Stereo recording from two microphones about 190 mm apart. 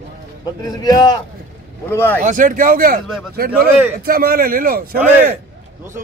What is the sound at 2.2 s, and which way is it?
Speech, 45° right (ahead or behind).